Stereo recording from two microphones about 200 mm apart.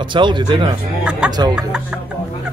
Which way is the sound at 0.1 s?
25° right (ahead or behind).